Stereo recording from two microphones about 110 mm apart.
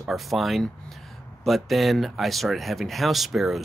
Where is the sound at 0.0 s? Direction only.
Centre (ahead or behind).